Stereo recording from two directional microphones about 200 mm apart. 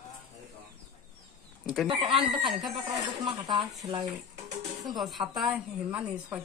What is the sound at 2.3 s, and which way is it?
Speech, centre (ahead or behind).